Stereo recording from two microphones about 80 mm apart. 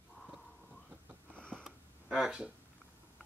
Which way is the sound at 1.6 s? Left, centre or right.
Centre.